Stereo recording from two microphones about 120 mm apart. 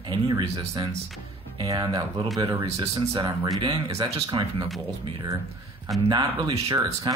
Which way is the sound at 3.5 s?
35° right (ahead or behind).